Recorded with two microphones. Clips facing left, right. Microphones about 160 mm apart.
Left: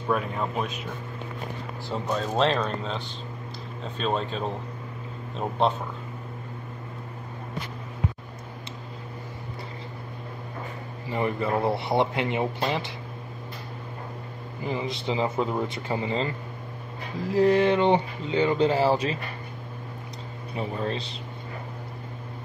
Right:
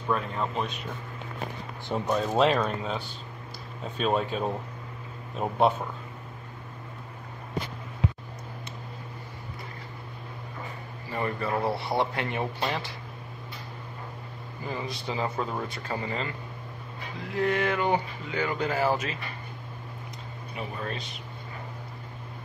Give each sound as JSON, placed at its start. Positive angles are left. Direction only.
{"t": 0.1, "sound": "a man's voice", "side_deg": 5}
{"t": 2.0, "sound": "speech", "side_deg": -10}
{"t": 11.1, "sound": "speech", "side_deg": 20}
{"t": 14.6, "sound": "speech", "side_deg": 20}
{"t": 17.2, "sound": "speech", "side_deg": 35}
{"t": 20.5, "sound": "speech", "side_deg": 25}